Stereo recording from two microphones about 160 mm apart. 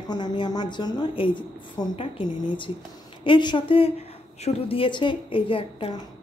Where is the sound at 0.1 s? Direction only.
30° left (ahead or behind).